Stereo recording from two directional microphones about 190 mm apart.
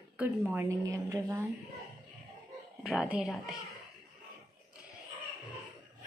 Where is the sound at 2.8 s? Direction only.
5° right (ahead or behind).